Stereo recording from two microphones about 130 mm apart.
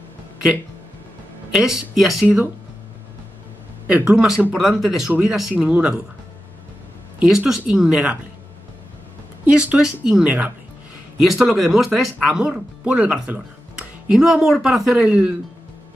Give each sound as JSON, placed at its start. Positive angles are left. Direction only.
{"t": 1.5, "sound": "speech", "side_deg": -5}
{"t": 2.2, "sound": "speech", "side_deg": -10}
{"t": 3.8, "sound": "speech", "side_deg": -10}
{"t": 7.2, "sound": "speech", "side_deg": -5}
{"t": 9.5, "sound": "speech", "side_deg": -10}